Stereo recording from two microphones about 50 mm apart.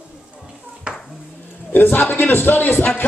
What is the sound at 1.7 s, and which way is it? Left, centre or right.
Speech, left.